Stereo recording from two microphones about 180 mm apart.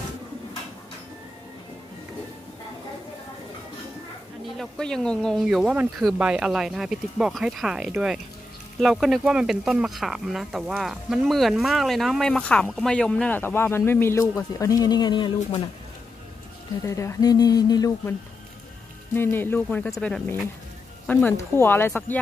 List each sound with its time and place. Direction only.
4.6 s speech: 5° left (ahead or behind); by 15.6 s 25° left (ahead or behind)
16.8 s speech: 15° left (ahead or behind)
19.1 s speech: 10° left (ahead or behind)